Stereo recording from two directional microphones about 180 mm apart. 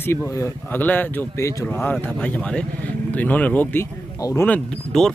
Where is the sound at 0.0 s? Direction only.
15° left (ahead or behind).